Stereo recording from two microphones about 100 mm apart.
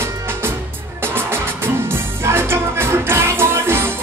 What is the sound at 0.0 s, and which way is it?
Music, 25° right (ahead or behind).